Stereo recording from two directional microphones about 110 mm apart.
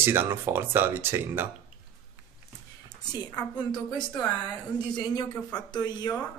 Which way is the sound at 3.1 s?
35° left (ahead or behind).